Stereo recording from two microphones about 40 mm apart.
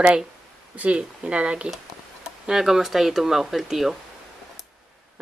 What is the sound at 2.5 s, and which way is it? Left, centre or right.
Speech, centre.